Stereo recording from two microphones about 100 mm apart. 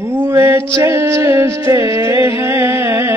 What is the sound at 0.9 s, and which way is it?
Music, 25° right (ahead or behind).